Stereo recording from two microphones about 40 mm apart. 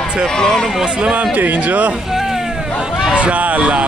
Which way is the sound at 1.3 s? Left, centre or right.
Right.